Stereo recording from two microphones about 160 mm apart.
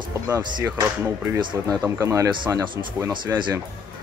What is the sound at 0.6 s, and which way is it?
Speech, 15° right (ahead or behind).